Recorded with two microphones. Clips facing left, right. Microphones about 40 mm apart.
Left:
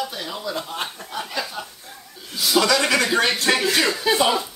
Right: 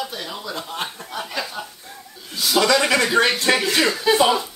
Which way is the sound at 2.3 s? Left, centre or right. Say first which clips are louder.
Right 1 dB; centre.